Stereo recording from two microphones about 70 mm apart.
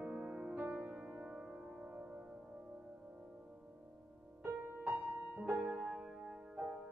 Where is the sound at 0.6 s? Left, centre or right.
Right.